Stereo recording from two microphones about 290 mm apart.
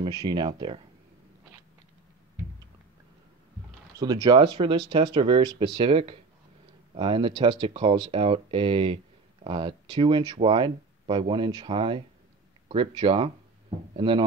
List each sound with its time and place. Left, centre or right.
0.0 s speech: centre
4.0 s speech: centre